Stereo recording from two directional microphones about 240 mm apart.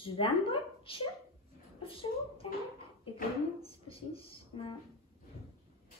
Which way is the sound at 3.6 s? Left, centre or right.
Left.